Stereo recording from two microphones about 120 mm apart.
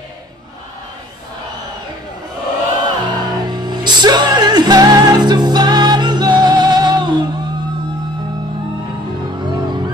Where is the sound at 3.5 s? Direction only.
35° right (ahead or behind).